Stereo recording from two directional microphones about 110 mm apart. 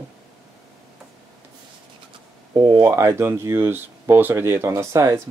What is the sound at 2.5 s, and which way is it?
Speech, 35° right (ahead or behind).